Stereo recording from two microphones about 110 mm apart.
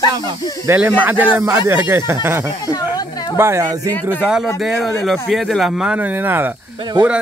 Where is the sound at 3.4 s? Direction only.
25° right (ahead or behind).